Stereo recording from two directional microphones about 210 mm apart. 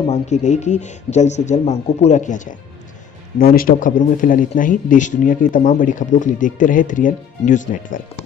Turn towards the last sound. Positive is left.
turn(degrees=40)  # may be behind; listen again after turning